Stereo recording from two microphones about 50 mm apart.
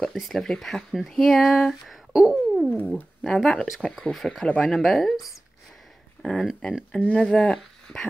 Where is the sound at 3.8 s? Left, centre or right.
Centre.